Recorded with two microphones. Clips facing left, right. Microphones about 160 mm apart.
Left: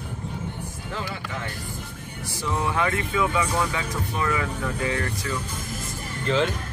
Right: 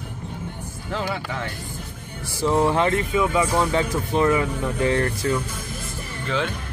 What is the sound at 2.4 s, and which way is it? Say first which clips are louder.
Speech: right 6 dB; 30° right (ahead or behind).